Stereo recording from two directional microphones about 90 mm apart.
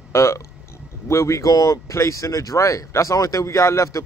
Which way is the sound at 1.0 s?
30° left (ahead or behind).